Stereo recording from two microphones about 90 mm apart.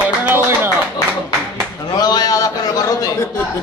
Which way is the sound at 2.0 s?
45° left (ahead or behind).